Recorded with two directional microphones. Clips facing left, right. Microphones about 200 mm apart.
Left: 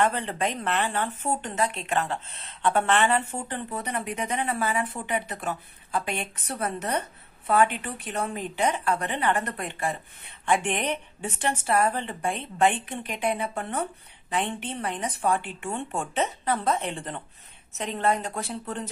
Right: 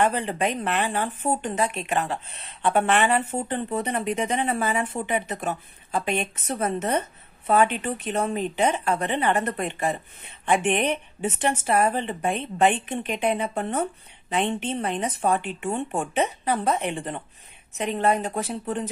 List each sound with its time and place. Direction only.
0.0 s speech: 15° right (ahead or behind)
7.4 s speech: 25° right (ahead or behind)
9.3 s speech: 15° right (ahead or behind)